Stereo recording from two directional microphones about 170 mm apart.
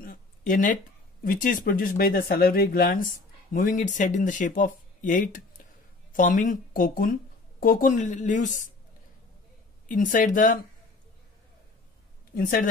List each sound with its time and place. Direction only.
0.0 s a sound: 55° left (ahead or behind)
1.2 s speech: 55° left (ahead or behind)
9.8 s speech: 50° left (ahead or behind)
12.4 s speech: 55° left (ahead or behind)